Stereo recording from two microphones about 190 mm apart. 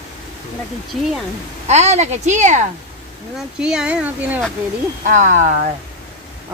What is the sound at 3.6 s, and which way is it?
Speech, 5° right (ahead or behind).